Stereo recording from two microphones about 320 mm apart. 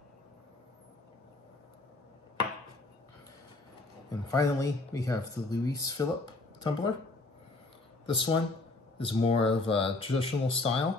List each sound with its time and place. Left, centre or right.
4.1 s speech: centre
8.1 s speech: centre